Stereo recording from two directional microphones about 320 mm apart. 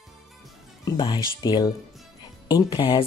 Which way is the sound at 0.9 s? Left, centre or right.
Centre.